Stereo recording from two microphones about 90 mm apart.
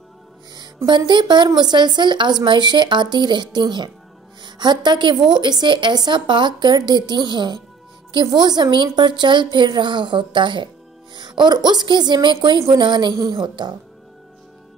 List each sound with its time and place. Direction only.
0.8 s a woman's voice: 55° right (ahead or behind)